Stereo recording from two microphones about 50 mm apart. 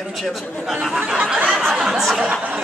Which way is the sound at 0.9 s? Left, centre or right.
Right.